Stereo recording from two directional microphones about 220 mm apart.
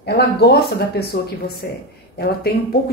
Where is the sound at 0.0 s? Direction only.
45° left (ahead or behind).